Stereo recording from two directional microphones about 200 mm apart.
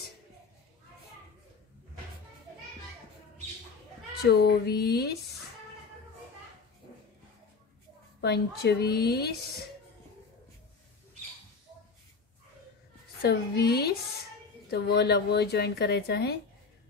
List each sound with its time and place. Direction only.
4.2 s a woman's voice: 55° left (ahead or behind)
8.2 s a woman's voice: 55° left (ahead or behind)
13.2 s a woman's voice: 55° left (ahead or behind)